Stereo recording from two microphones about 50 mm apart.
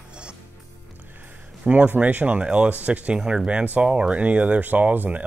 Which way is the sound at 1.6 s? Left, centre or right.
Right.